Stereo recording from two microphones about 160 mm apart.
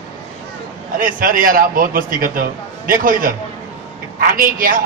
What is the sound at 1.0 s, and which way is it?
A man's voice, 60° right (ahead or behind).